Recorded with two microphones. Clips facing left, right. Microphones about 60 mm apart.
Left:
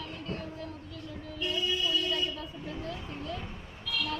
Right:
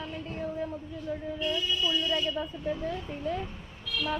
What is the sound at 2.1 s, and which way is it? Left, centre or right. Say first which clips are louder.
Speech: right 3 dB; centre.